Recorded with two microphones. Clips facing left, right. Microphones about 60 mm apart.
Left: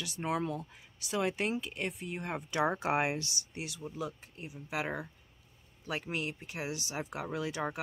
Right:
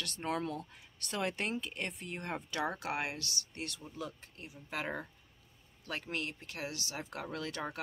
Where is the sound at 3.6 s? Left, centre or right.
Centre.